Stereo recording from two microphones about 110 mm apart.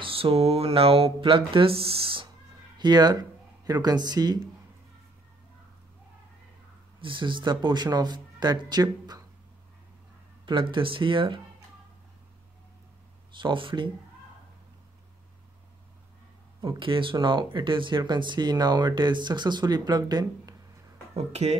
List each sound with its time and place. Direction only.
0.0 s speech: 60° right (ahead or behind)
2.8 s speech: 40° right (ahead or behind)
7.0 s speech: 50° right (ahead or behind)
10.4 s speech: 45° right (ahead or behind)
13.3 s speech: 50° right (ahead or behind)
16.6 s speech: 50° right (ahead or behind)
21.1 s speech: 75° right (ahead or behind)